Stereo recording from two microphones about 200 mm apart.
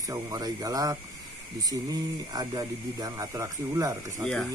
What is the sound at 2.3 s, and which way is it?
Speech, 20° right (ahead or behind).